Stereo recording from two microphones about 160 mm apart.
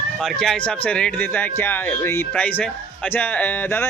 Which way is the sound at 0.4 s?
5° left (ahead or behind).